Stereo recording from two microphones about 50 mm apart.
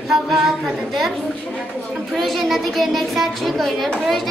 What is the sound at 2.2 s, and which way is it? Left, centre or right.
A woman's voice, centre.